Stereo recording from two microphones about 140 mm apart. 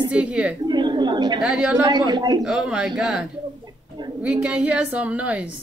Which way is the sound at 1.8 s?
30° right (ahead or behind).